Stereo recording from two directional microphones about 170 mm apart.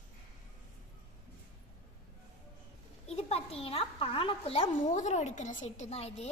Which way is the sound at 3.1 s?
35° left (ahead or behind).